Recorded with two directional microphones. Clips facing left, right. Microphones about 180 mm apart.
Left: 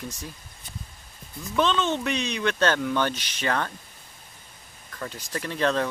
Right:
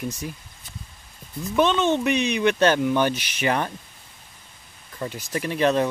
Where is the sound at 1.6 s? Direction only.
15° right (ahead or behind).